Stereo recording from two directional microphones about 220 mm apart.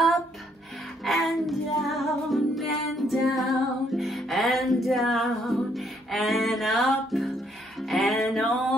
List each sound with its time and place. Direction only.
1.0 s music: centre (ahead or behind)